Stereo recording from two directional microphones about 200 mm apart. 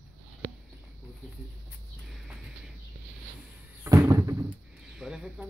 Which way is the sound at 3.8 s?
15° right (ahead or behind).